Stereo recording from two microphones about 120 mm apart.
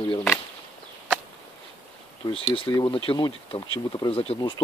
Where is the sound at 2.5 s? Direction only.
40° left (ahead or behind).